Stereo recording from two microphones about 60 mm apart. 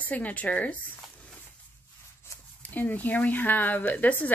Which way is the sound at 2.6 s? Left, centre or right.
Left.